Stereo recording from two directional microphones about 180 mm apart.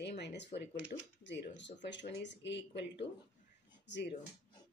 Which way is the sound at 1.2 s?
80° left.